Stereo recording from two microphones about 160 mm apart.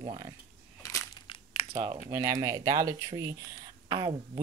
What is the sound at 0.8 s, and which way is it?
Crushing, 15° left (ahead or behind).